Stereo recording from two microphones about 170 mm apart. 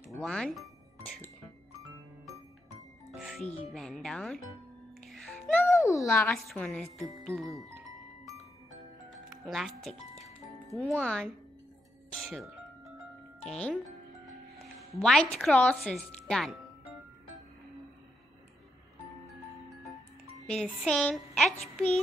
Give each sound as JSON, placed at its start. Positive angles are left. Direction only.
{"t": 0.2, "sound": "music", "side_deg": 0}
{"t": 3.1, "sound": "music", "side_deg": 0}
{"t": 3.4, "sound": "speech", "side_deg": 35}
{"t": 3.7, "sound": "a woman's voice", "side_deg": 0}
{"t": 7.8, "sound": "music", "side_deg": -20}
{"t": 9.3, "sound": "a woman's voice", "side_deg": 0}
{"t": 12.1, "sound": "music", "side_deg": 0}
{"t": 14.8, "sound": "a woman's voice", "side_deg": 0}
{"t": 20.5, "sound": "a woman's voice", "side_deg": 5}